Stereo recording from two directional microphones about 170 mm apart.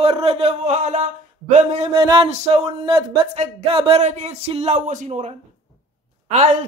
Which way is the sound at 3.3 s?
40° right (ahead or behind).